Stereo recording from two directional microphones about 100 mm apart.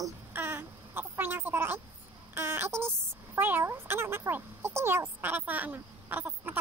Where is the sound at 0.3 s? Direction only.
20° right (ahead or behind).